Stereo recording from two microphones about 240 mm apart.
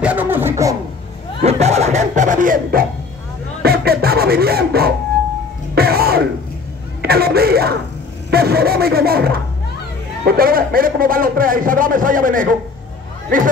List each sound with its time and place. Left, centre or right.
0.0 s a sound: centre
1.4 s speech: right
5.8 s throat clearing: right
7.0 s a man's voice: right